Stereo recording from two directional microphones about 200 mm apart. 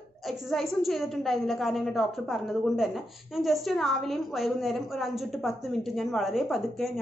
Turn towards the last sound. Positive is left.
turn(degrees=0)  # may be behind; listen again after turning